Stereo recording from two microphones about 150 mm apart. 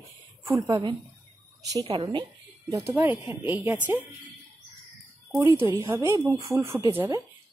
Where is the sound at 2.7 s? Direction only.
20° right (ahead or behind).